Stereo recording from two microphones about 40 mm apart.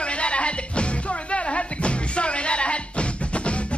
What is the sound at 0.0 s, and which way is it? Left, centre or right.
Music, left.